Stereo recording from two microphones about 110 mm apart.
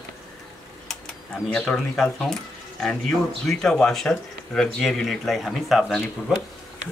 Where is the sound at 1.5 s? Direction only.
5° left (ahead or behind).